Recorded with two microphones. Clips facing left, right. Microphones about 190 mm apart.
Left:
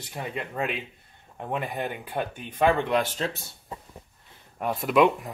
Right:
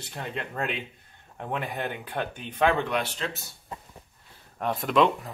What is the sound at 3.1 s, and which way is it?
Speech, 40° left (ahead or behind).